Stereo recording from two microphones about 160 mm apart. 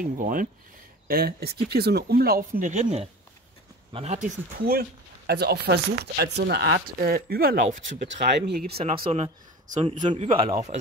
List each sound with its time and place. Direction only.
0.0 s speech: 60° right (ahead or behind)
1.0 s speech: 70° right (ahead or behind); by 4.3 s 45° right (ahead or behind)
4.6 s speech: 80° right; by 7.7 s 60° right (ahead or behind)
8.2 s speech: 85° right
9.0 s speech: 40° right (ahead or behind)